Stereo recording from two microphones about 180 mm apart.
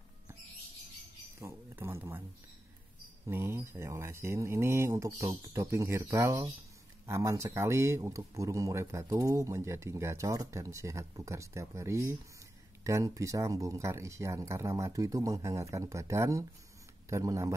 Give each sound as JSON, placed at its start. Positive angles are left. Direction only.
{"t": 1.4, "sound": "speech", "side_deg": -15}
{"t": 3.3, "sound": "speech", "side_deg": -15}